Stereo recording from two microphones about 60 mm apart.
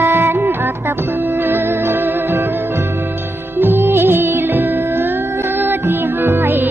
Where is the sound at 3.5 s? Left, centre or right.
Right.